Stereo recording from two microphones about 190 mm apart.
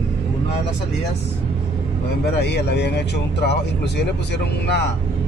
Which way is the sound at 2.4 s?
60° left (ahead or behind).